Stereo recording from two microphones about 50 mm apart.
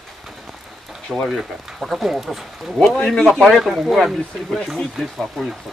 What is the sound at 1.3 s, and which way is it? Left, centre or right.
Speech, centre.